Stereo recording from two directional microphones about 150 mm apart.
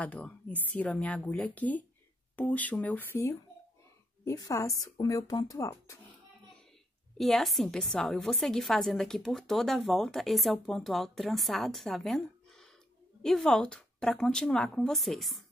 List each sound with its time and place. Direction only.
0.0 s a woman's voice: 10° left (ahead or behind)
7.2 s a woman's voice: centre (ahead or behind)